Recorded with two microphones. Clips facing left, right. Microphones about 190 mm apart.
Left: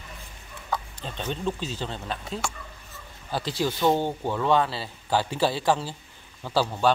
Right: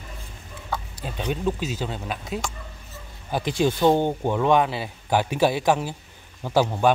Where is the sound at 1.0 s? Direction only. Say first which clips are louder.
Right 6 dB; 10° right (ahead or behind).